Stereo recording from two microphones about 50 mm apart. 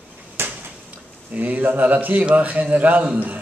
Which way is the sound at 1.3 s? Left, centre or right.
Right.